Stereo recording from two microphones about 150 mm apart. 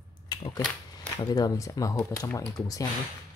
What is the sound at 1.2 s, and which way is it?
Speech, 25° left (ahead or behind).